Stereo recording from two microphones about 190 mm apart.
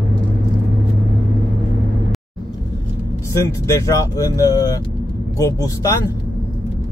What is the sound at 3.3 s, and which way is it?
Speech, 15° left (ahead or behind).